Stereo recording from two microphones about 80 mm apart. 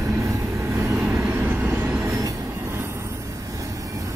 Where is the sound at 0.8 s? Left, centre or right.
Right.